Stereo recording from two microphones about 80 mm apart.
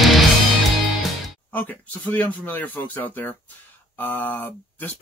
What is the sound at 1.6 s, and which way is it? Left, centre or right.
Speech, left.